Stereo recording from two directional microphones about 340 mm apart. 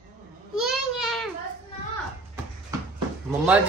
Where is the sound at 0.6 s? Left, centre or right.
Centre.